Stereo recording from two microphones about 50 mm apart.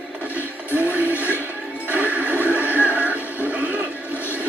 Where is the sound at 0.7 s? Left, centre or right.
Right.